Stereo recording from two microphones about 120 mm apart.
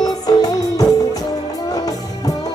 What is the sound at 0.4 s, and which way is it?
Music, 30° left (ahead or behind).